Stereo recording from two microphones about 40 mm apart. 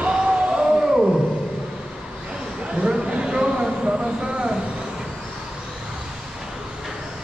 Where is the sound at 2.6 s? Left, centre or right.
Right.